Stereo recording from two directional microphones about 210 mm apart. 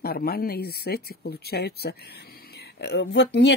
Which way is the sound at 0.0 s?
45° left (ahead or behind).